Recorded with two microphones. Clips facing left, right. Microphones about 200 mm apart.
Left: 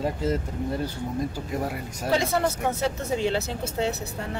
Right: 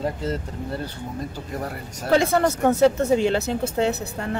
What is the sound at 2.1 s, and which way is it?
Speech, 55° right (ahead or behind).